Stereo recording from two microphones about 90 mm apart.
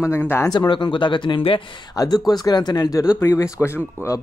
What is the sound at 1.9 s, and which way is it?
Speech, 45° left (ahead or behind).